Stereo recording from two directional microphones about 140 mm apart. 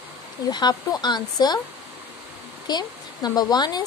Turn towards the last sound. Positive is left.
turn(degrees=30)  # may be behind; listen again after turning